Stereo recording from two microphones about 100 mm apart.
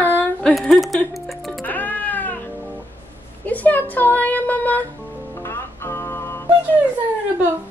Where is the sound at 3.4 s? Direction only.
15° left (ahead or behind).